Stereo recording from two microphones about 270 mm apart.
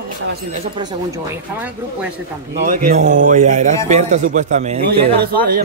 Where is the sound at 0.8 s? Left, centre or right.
Centre.